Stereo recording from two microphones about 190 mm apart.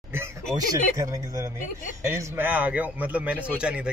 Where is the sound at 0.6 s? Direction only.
15° right (ahead or behind).